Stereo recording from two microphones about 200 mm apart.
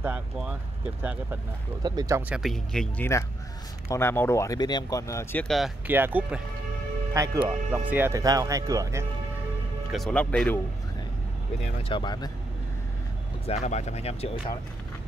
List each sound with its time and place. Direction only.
0.0 s speech: 5° right (ahead or behind)
1.8 s speech: 20° right (ahead or behind); by 5.7 s 5° left (ahead or behind)
5.9 s speech: 10° right (ahead or behind)
9.8 s speech: centre (ahead or behind)
11.9 s speech: 20° left (ahead or behind)
13.5 s speech: 35° left (ahead or behind)